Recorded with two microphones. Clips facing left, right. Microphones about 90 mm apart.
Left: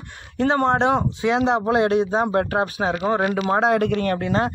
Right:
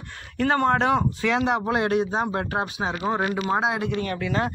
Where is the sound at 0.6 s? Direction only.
30° left (ahead or behind).